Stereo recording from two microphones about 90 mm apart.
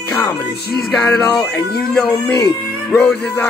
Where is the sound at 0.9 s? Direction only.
10° left (ahead or behind).